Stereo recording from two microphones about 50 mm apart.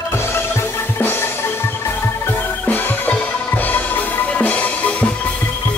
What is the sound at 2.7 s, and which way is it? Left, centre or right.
Music, left.